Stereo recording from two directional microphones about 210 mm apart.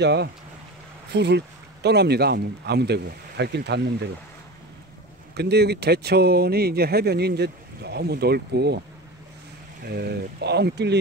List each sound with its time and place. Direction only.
0.0 s speech: 50° right (ahead or behind)
5.3 s speech: 50° right (ahead or behind)
9.8 s speech: 50° right (ahead or behind)